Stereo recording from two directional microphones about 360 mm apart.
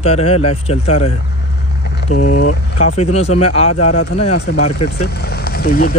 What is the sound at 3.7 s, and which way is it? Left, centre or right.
Speech, left.